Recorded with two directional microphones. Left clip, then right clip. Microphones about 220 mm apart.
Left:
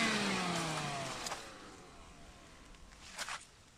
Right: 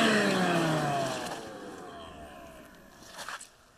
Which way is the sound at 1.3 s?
30° right (ahead or behind).